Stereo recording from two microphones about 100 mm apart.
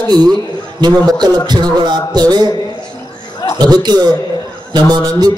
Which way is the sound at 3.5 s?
45° right (ahead or behind).